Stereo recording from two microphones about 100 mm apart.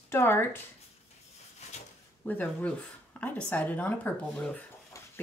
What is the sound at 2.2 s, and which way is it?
Speech, 15° left (ahead or behind).